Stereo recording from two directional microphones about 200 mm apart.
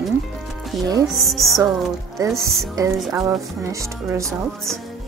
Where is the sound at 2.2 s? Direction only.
15° right (ahead or behind).